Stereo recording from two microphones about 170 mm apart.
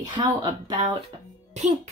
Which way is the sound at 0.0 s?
25° right (ahead or behind).